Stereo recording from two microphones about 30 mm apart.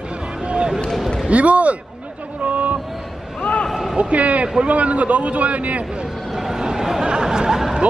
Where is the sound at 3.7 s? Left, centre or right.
Centre.